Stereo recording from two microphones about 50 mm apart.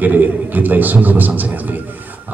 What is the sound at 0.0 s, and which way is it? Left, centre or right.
A man's voice, right.